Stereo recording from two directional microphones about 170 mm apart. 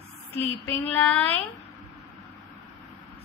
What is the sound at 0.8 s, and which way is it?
Speech, 10° left (ahead or behind).